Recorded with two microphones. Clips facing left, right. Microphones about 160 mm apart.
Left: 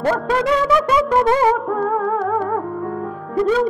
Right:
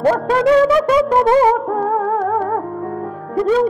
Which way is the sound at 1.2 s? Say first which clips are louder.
Right 3 dB; 30° right (ahead or behind).